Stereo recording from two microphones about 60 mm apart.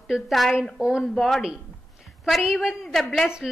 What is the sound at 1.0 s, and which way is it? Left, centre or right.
A woman's voice, centre.